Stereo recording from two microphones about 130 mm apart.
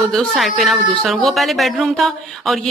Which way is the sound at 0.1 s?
Centre (ahead or behind).